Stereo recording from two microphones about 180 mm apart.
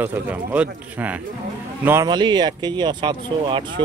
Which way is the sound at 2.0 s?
25° right (ahead or behind).